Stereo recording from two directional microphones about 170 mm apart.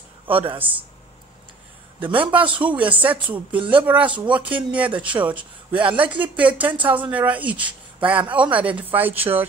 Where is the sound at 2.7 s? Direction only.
10° right (ahead or behind).